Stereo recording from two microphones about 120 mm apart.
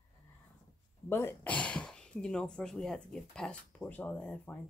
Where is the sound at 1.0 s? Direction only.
20° left (ahead or behind).